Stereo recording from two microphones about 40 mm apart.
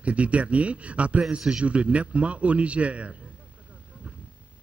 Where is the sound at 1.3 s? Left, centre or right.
Right.